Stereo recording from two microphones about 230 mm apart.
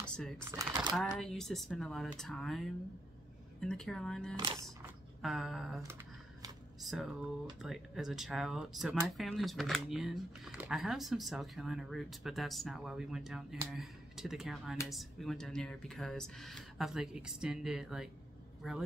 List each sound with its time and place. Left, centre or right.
0.0 s a sound: centre
0.5 s speech: centre
0.9 s speech: centre
5.8 s music: centre
6.8 s speech: centre